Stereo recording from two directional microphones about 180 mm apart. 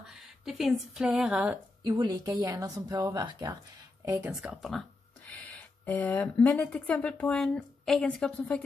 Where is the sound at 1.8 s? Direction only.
20° right (ahead or behind).